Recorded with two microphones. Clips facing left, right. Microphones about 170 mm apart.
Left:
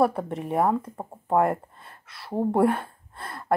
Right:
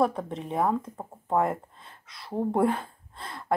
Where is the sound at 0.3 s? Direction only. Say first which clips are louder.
Left 3 dB; 5° left (ahead or behind).